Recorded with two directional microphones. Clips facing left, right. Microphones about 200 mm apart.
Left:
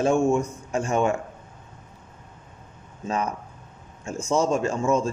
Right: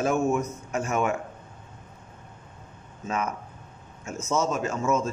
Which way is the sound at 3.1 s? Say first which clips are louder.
Left 2 dB; 35° left (ahead or behind).